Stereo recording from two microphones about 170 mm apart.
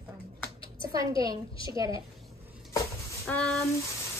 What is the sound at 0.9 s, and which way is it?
A woman's voice, 20° right (ahead or behind).